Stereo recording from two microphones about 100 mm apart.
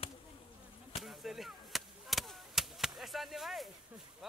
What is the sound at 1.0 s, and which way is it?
Chop, 5° right (ahead or behind).